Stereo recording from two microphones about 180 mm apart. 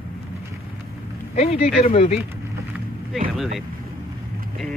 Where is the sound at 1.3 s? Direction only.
35° left (ahead or behind).